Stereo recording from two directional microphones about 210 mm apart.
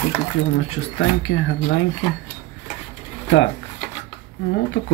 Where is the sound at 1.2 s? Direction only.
65° left (ahead or behind).